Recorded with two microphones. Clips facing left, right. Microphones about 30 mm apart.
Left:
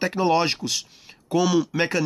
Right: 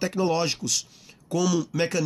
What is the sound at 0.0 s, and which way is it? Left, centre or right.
Speech, left.